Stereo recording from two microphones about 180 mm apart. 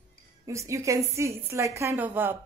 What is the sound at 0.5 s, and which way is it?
A woman's voice, 15° right (ahead or behind).